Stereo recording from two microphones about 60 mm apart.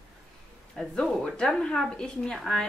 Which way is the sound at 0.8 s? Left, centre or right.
Centre.